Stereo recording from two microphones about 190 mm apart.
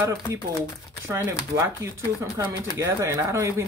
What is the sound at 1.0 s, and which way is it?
Speech, 15° right (ahead or behind).